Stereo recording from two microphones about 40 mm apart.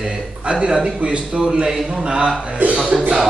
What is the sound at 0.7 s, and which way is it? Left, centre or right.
A man's voice, right.